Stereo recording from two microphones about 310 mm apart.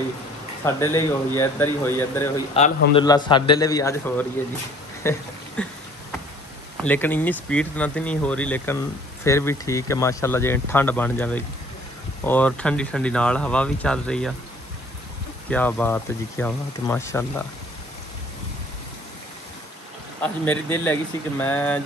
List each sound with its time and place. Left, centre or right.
0.7 s speech: centre
2.5 s speech: centre
6.8 s speech: centre
15.5 s speech: centre
20.2 s speech: centre